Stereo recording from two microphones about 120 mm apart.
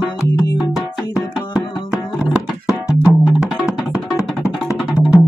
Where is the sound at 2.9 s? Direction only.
5° right (ahead or behind).